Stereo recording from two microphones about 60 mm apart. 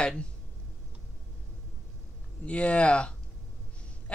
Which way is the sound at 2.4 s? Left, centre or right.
Centre.